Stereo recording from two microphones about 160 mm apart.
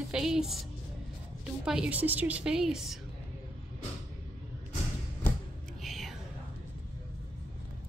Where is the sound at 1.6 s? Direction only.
5° right (ahead or behind).